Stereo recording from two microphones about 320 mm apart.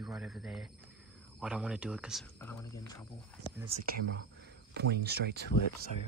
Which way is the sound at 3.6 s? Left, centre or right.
Centre.